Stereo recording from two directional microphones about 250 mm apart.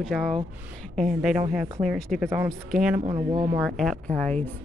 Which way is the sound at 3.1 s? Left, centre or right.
Centre.